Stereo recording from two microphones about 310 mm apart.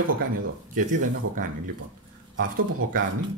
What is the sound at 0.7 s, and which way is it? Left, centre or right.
Speech, right.